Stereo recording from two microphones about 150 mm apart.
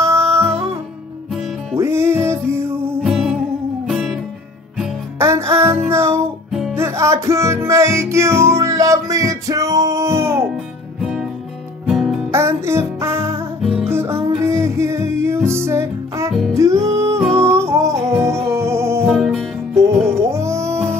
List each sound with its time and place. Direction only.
0.0 s music: 20° right (ahead or behind)
1.8 s music: 15° right (ahead or behind)
3.0 s music: centre (ahead or behind)
5.2 s music: 20° right (ahead or behind)
10.5 s music: centre (ahead or behind)
12.3 s music: 20° right (ahead or behind)
13.6 s music: 5° right (ahead or behind)
13.8 s music: 15° right (ahead or behind)
19.0 s music: centre (ahead or behind)
19.7 s music: 20° right (ahead or behind)